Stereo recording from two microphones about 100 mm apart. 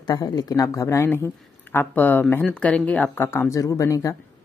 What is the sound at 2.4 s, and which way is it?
Speech, 5° left (ahead or behind).